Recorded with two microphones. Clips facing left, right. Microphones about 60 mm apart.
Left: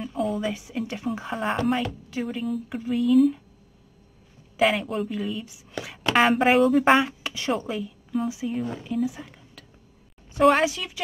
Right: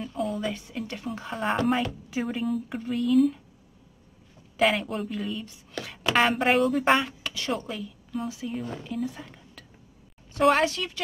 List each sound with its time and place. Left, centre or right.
0.0 s a woman's voice: centre
4.6 s a woman's voice: centre
7.1 s a woman's voice: centre